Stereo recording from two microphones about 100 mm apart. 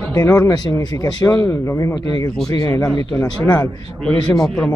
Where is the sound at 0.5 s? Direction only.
40° left (ahead or behind).